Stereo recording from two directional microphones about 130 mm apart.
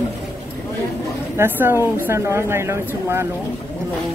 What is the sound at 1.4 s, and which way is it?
A woman's voice, 15° right (ahead or behind).